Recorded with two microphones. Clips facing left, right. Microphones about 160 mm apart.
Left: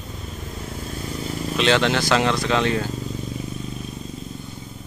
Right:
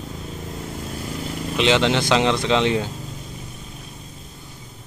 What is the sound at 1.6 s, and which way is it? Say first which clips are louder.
Speech: right 1 dB; 20° right (ahead or behind).